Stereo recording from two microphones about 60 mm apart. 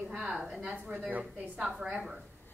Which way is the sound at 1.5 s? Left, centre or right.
Centre.